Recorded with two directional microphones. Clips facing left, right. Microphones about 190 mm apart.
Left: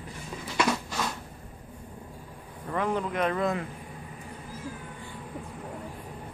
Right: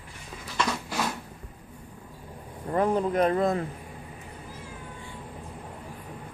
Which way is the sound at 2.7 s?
35° right (ahead or behind).